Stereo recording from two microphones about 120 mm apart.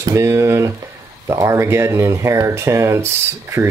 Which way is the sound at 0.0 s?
25° right (ahead or behind).